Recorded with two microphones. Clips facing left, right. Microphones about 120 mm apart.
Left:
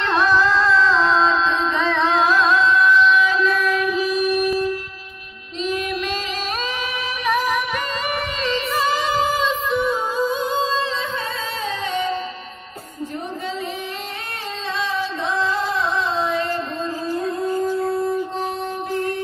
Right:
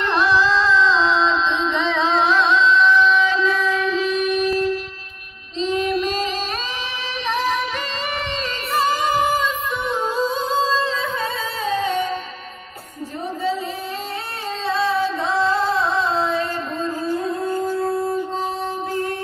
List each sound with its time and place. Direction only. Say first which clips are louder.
1.4 s music: left 1 dB; 5° left (ahead or behind)
3.5 s a sound: even; 10° left (ahead or behind)
5.6 s music: right 3 dB; 30° right (ahead or behind)
8.5 s music: even; 45° right (ahead or behind)
9.9 s music: even; 30° right (ahead or behind)
14.7 s singing: right 5 dB; 30° right (ahead or behind)